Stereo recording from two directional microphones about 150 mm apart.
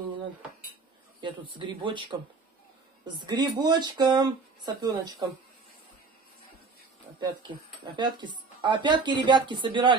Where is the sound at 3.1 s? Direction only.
30° right (ahead or behind).